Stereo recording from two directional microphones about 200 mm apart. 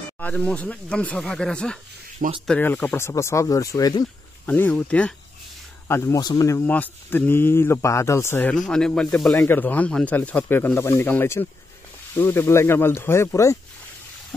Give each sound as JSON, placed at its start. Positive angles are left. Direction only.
{"t": 0.2, "sound": "speech", "side_deg": 5}
{"t": 2.1, "sound": "speech", "side_deg": -35}
{"t": 2.4, "sound": "speech", "side_deg": 10}